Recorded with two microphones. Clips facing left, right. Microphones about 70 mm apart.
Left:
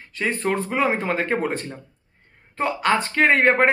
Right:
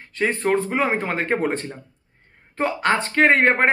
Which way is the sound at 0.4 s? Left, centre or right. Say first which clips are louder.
Even; right.